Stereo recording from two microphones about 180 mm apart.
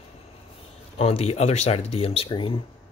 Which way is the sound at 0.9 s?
35° left (ahead or behind).